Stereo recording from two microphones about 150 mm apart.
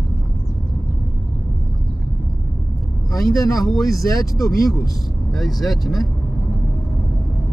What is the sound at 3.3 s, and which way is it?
Speech, 25° left (ahead or behind).